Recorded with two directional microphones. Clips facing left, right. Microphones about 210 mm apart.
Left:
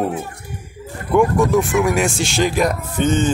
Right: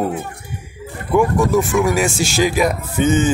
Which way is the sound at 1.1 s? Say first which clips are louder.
Even; centre (ahead or behind).